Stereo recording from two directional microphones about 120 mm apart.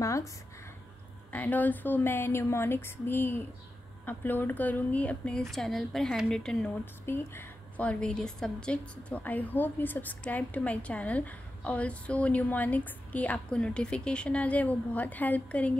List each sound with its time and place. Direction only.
1.3 s a woman's voice: 15° left (ahead or behind)